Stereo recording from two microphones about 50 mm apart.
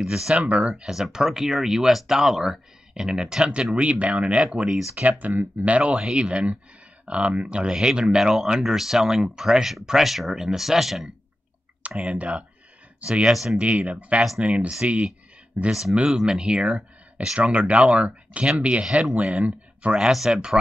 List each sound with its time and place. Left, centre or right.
0.1 s speech: centre
0.9 s speech: centre
3.7 s speech: right
5.2 s speech: right
5.8 s speech: centre
11.9 s speech: right
13.6 s speech: right
15.7 s speech: centre
20.0 s speech: centre